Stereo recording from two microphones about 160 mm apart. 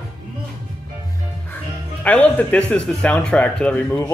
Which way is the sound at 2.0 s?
10° left (ahead or behind).